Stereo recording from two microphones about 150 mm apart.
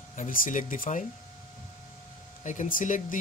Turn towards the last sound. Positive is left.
turn(degrees=60)  # may be behind; listen again after turning